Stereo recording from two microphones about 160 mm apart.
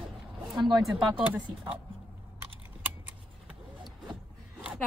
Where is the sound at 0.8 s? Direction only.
Centre (ahead or behind).